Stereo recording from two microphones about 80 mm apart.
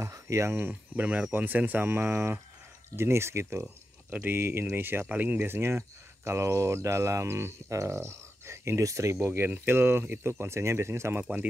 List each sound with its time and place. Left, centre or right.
0.0 s speech: right